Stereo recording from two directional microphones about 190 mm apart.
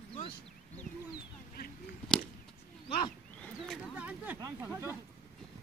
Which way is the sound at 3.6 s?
5° right (ahead or behind).